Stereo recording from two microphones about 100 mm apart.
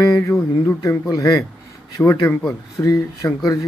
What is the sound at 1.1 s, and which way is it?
Speech, 35° left (ahead or behind).